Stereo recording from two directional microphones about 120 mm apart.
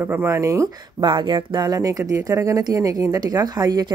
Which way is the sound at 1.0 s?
40° right (ahead or behind).